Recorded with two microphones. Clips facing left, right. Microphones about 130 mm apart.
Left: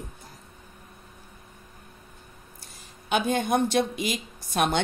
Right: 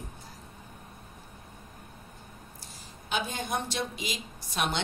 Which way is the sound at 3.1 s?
60° left (ahead or behind).